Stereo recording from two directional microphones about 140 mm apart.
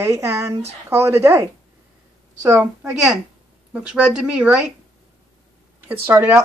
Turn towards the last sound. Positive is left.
turn(degrees=-10)  # may be behind; listen again after turning